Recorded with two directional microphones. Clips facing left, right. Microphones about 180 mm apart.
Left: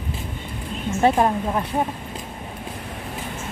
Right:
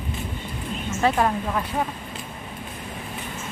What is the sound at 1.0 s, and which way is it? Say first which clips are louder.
Speech: left 3 dB; 25° left (ahead or behind).